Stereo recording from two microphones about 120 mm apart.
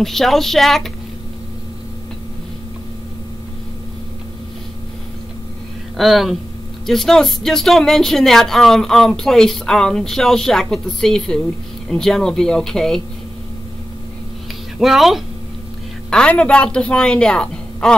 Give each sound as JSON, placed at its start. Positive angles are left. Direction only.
{"t": 0.0, "sound": "speech", "side_deg": 0}
{"t": 5.9, "sound": "speech", "side_deg": 0}
{"t": 14.8, "sound": "a woman's voice", "side_deg": 0}